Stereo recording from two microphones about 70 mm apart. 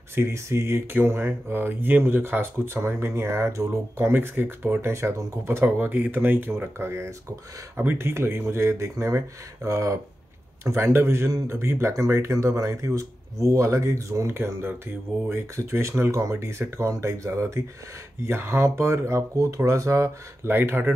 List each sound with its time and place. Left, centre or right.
0.1 s speech: right
4.1 s speech: right
10.6 s speech: right
14.2 s speech: right
16.1 s speech: right